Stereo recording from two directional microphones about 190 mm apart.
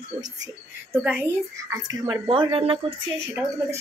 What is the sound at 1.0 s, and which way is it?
Speech, 5° right (ahead or behind).